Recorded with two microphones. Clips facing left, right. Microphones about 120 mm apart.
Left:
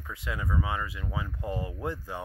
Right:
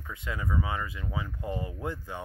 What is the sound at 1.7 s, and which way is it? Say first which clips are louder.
Speech: left 1 dB; 10° left (ahead or behind).